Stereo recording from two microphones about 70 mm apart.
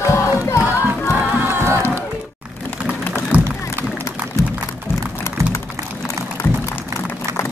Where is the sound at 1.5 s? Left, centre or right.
Right.